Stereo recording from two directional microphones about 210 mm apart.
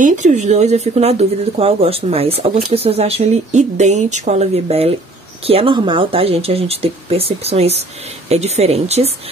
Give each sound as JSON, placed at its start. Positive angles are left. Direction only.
{"t": 0.0, "sound": "speech", "side_deg": -35}